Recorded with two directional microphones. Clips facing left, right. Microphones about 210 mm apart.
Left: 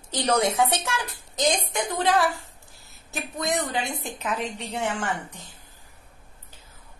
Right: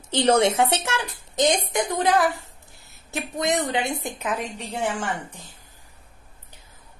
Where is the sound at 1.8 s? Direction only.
55° right (ahead or behind).